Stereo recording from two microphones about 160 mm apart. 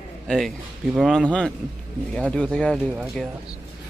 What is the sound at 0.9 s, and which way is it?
Speech, centre (ahead or behind).